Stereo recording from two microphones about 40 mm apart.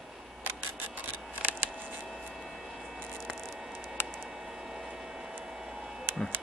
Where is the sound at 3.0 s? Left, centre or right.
Centre.